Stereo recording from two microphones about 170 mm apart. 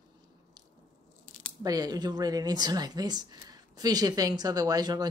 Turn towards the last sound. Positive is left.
turn(degrees=-20)  # may be behind; listen again after turning